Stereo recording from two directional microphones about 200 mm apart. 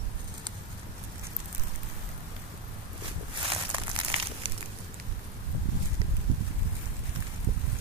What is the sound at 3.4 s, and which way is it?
Crumpling, 25° right (ahead or behind).